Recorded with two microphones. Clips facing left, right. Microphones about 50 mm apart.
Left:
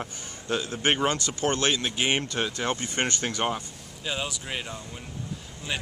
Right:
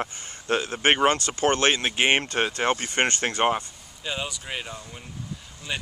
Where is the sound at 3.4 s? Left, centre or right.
Right.